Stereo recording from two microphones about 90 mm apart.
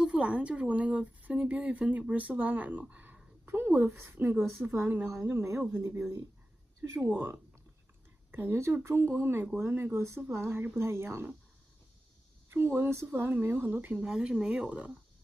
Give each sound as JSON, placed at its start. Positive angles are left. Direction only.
{"t": 0.0, "sound": "speech", "side_deg": -15}
{"t": 2.9, "sound": "a sound", "side_deg": -15}
{"t": 3.4, "sound": "speech", "side_deg": -25}
{"t": 12.5, "sound": "speech", "side_deg": -25}